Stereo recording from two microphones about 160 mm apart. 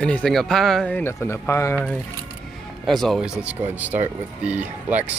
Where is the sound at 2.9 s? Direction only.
Centre (ahead or behind).